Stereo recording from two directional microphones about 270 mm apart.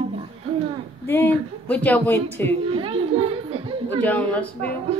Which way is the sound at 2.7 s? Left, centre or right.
Right.